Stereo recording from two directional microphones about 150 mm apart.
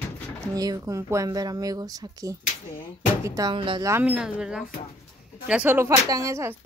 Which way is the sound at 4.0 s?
5° right (ahead or behind).